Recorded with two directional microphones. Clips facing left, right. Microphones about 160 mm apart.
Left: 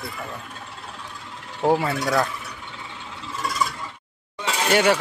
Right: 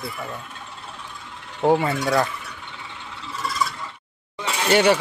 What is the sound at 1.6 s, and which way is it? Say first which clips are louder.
Speech: right 2 dB; centre (ahead or behind).